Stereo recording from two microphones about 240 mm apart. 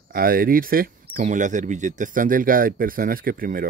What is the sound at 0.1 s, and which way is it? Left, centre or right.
Speech, right.